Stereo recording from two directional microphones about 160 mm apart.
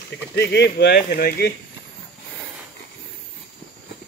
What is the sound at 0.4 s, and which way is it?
Speech, 90° left.